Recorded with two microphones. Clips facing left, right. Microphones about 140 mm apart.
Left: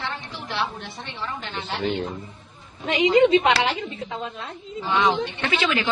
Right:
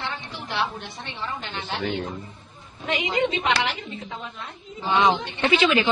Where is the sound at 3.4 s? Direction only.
35° left (ahead or behind).